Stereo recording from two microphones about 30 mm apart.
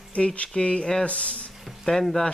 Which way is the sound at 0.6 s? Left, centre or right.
Left.